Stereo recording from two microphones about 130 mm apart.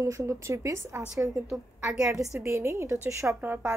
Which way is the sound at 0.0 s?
25° right (ahead or behind).